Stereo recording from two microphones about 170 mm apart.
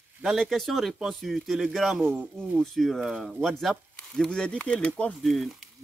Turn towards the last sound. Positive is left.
turn(degrees=0)  # may be behind; listen again after turning